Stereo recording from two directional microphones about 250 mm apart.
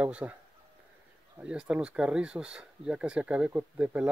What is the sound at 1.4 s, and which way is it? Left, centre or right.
Speech, centre.